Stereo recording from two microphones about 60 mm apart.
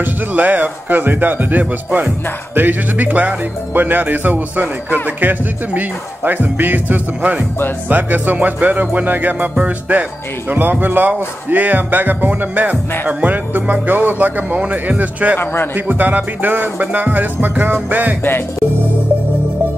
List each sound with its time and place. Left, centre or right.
0.0 s speech: right
7.9 s music: right
10.5 s speech: right
13.2 s music: right
15.3 s a man's voice: left
15.7 s music: right